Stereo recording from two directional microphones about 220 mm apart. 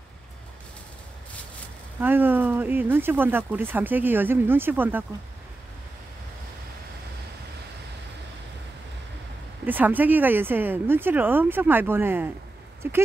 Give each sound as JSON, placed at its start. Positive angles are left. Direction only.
{"t": 2.0, "sound": "speech", "side_deg": -10}
{"t": 9.7, "sound": "speech", "side_deg": -10}